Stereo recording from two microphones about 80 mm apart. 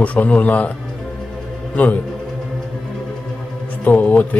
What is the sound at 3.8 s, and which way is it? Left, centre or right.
Speech, left.